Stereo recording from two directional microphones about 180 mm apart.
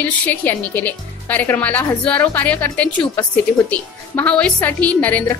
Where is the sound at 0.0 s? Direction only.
10° left (ahead or behind).